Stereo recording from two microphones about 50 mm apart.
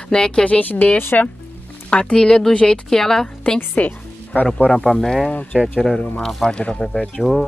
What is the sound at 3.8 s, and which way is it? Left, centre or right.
Speech, left.